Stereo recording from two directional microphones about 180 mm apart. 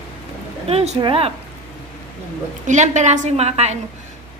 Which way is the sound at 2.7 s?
40° right (ahead or behind).